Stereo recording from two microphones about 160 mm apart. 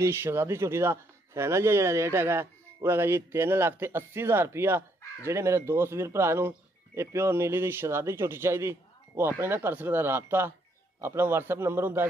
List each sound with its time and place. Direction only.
0.0 s a man's voice: 15° right (ahead or behind)